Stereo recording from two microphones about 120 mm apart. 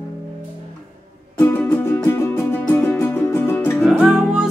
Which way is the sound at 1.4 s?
15° left (ahead or behind).